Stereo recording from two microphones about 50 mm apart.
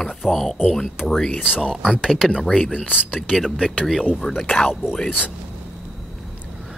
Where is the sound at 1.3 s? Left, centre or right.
Centre.